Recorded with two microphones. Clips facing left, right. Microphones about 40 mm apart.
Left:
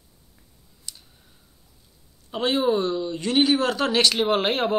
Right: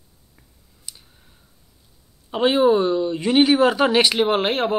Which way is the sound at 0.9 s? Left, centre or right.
Centre.